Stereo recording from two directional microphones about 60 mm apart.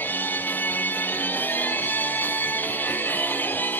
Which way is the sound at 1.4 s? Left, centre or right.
Left.